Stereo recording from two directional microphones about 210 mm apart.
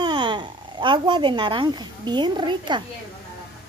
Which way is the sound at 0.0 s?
20° right (ahead or behind).